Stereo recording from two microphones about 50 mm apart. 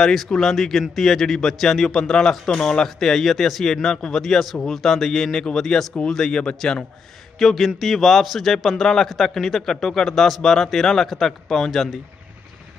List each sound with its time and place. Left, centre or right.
0.0 s a man's voice: centre
7.3 s a man's voice: centre